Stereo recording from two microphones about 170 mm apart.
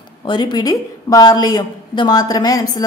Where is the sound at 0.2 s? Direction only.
25° left (ahead or behind).